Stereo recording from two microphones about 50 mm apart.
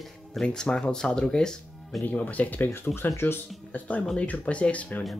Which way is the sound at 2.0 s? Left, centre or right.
Left.